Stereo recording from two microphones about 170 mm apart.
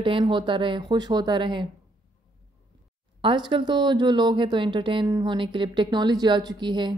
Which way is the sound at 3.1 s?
30° right (ahead or behind).